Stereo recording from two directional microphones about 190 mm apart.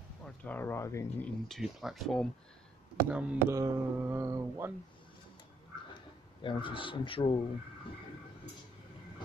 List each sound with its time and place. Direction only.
0.2 s speech: 10° left (ahead or behind)
1.5 s speech: centre (ahead or behind)
3.1 s mantra: 5° right (ahead or behind)
6.4 s speech: 25° left (ahead or behind)